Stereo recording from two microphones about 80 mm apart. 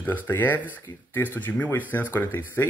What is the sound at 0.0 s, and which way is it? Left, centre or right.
Speech, left.